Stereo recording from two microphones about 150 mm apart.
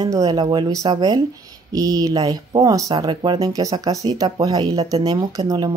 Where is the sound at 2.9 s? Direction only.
35° right (ahead or behind).